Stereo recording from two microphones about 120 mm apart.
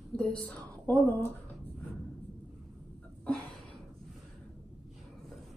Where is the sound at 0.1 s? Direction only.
10° left (ahead or behind).